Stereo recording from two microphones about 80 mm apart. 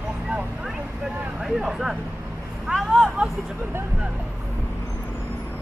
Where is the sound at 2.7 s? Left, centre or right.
Centre.